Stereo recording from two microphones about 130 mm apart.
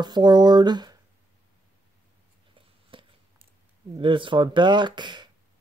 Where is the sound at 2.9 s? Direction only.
40° right (ahead or behind).